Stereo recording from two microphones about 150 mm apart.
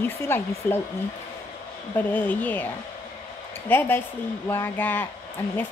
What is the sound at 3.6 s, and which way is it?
Speech, 15° left (ahead or behind).